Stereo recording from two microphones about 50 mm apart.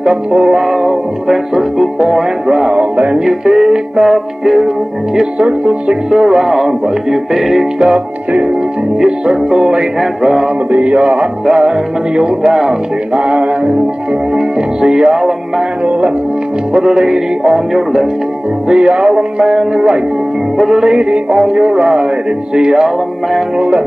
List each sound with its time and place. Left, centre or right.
0.1 s music: centre
2.8 s music: right
3.2 s music: centre
7.9 s music: centre
14.3 s music: centre
15.8 s music: right
16.7 s music: centre